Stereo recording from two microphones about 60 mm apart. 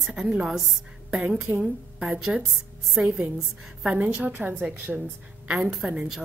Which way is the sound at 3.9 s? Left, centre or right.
Right.